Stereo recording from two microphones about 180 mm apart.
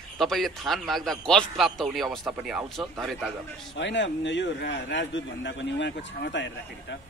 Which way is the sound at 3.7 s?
80° left.